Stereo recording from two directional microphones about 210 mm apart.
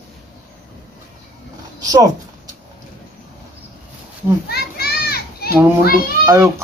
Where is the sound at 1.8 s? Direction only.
15° right (ahead or behind).